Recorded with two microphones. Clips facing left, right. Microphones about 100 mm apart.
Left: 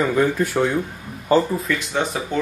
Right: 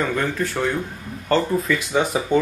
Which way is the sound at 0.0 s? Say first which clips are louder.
Left 4 dB; 10° left (ahead or behind).